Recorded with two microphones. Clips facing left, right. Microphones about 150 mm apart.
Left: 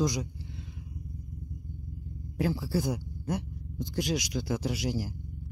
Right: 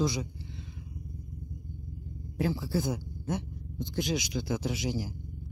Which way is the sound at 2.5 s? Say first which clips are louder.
Left 1 dB; 5° left (ahead or behind).